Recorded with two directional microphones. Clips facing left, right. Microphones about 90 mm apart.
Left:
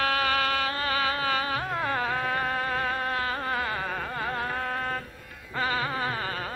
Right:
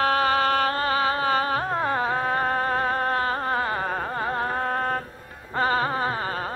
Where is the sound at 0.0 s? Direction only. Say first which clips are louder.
Right 5 dB; 35° right (ahead or behind).